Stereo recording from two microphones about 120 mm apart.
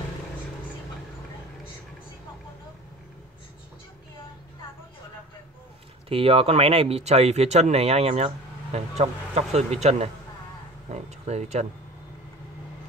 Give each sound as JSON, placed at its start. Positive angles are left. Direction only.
{"t": 6.0, "sound": "speech", "side_deg": -50}